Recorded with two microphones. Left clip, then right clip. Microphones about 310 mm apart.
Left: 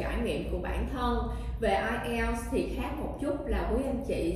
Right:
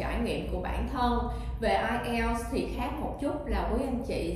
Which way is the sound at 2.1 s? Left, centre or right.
Right.